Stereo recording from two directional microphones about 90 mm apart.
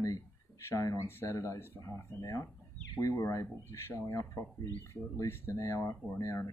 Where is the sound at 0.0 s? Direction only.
35° left (ahead or behind).